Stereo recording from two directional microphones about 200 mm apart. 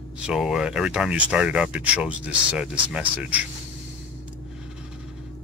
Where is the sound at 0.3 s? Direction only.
Centre (ahead or behind).